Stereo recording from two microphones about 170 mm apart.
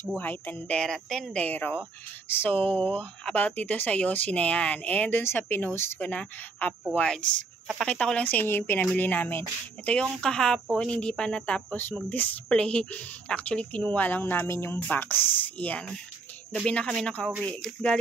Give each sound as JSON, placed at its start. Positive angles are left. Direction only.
{"t": 0.2, "sound": "a woman's voice", "side_deg": 10}
{"t": 2.5, "sound": "speech", "side_deg": -35}
{"t": 2.9, "sound": "a woman's voice", "side_deg": 10}